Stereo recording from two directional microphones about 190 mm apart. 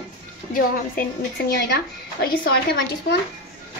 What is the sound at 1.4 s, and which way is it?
Speech, 60° left (ahead or behind).